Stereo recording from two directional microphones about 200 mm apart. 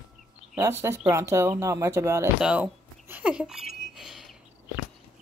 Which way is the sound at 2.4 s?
5° right (ahead or behind).